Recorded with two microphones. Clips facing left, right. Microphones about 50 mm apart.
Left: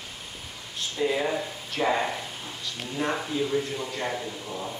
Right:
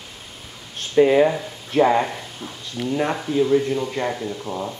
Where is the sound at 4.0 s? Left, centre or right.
Right.